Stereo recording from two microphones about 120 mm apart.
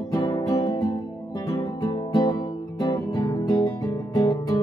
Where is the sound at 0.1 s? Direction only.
30° left (ahead or behind).